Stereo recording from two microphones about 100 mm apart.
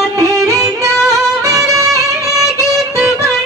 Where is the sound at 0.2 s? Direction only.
35° right (ahead or behind).